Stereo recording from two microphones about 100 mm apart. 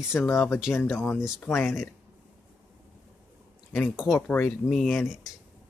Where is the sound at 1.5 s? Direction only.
5° right (ahead or behind).